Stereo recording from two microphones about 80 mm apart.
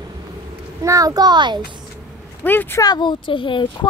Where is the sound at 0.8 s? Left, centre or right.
Right.